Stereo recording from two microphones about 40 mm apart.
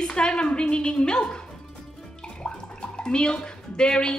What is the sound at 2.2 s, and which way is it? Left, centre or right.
Bathtub, left.